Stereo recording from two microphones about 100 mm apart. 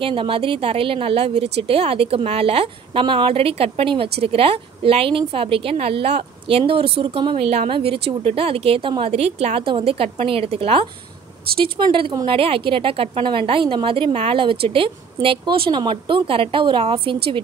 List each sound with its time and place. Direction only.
0.0 s speech: 60° right (ahead or behind); by 9.7 s 90° right
9.7 s a woman's voice: 65° right (ahead or behind)